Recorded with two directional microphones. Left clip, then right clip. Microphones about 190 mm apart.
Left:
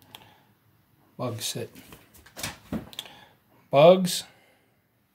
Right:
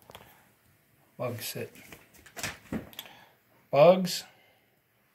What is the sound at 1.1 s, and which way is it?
Speech, 20° left (ahead or behind).